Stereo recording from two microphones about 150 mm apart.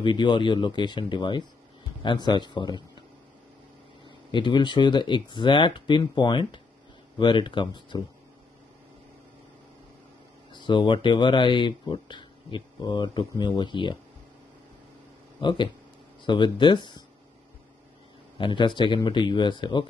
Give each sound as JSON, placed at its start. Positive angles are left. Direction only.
{"t": 0.0, "sound": "speech", "side_deg": 30}
{"t": 4.0, "sound": "speech", "side_deg": 30}
{"t": 10.5, "sound": "speech", "side_deg": 30}
{"t": 15.4, "sound": "speech", "side_deg": 30}
{"t": 18.4, "sound": "speech", "side_deg": 30}